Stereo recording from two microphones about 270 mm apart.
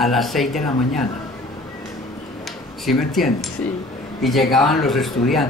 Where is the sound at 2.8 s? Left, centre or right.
Centre.